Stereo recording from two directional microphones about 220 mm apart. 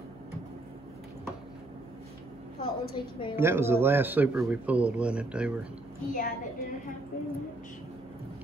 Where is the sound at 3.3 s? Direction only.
10° right (ahead or behind).